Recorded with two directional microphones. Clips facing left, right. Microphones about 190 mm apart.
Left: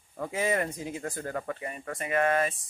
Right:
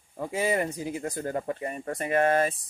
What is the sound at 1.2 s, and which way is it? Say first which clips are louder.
Speech: right 4 dB; 30° right (ahead or behind).